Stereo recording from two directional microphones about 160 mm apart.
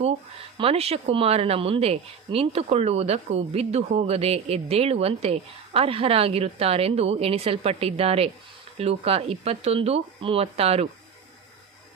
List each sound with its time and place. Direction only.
0.6 s speech: 40° right (ahead or behind)